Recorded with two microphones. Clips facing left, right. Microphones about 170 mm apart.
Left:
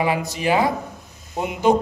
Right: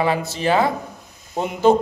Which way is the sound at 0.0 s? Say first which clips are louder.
Right 1 dB; 15° left (ahead or behind).